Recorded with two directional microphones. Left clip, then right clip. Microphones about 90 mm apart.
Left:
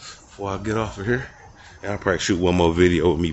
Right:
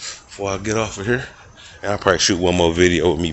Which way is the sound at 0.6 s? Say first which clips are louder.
Right 4 dB; 15° left (ahead or behind).